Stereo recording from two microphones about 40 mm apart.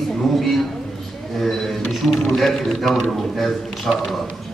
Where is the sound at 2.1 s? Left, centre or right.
Centre.